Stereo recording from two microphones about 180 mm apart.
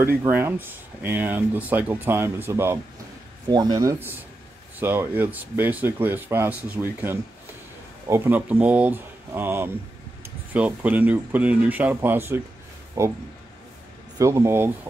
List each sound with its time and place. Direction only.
0.0 s speech: 15° right (ahead or behind)
14.1 s speech: 15° right (ahead or behind)